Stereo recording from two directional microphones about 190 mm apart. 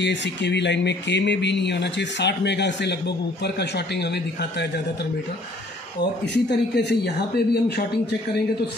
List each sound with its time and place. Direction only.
0.0 s speech: 65° left (ahead or behind)
6.2 s speech: 65° left (ahead or behind)